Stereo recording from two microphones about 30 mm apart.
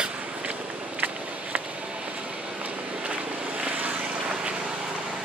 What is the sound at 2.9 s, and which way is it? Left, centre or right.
Vehicle, right.